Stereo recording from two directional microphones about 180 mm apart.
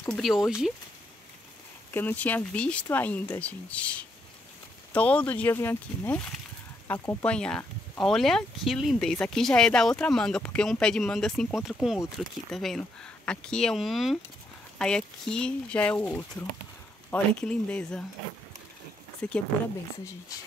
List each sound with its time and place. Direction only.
0.0 s speech: centre (ahead or behind)
2.0 s speech: 10° left (ahead or behind)
19.2 s speech: 5° left (ahead or behind)